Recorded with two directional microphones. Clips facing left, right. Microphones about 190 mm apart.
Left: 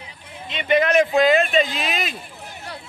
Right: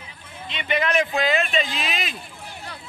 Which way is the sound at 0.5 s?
50° left (ahead or behind).